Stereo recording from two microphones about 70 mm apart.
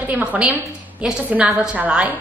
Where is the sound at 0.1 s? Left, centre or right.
Right.